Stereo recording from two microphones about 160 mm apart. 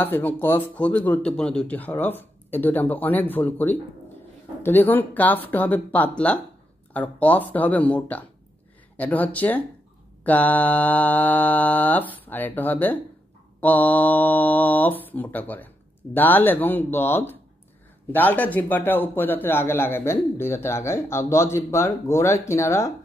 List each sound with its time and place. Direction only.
0.0 s a man's voice: 10° left (ahead or behind)